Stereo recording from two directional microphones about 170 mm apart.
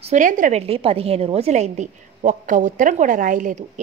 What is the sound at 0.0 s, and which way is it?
A woman's voice, 50° right (ahead or behind).